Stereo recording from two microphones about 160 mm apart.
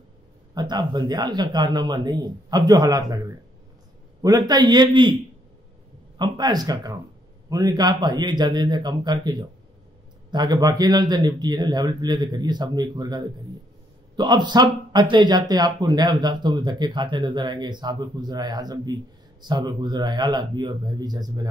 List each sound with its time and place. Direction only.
0.6 s speech: 25° right (ahead or behind)
6.1 s speech: 25° right (ahead or behind)